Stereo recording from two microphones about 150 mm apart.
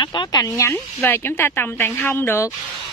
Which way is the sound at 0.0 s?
30° left (ahead or behind).